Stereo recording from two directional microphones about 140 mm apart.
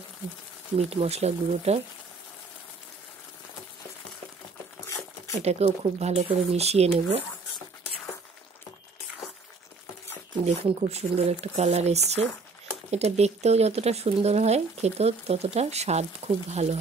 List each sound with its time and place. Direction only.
0.7 s speech: 50° right (ahead or behind)
4.8 s a sound: 25° left (ahead or behind)
5.3 s speech: 50° right (ahead or behind)
10.4 s speech: 50° right (ahead or behind)